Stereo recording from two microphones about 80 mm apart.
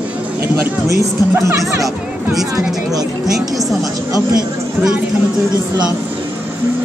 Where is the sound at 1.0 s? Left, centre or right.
Right.